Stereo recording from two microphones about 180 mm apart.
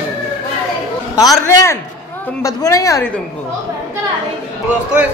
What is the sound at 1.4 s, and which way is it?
A woman's voice, 15° left (ahead or behind).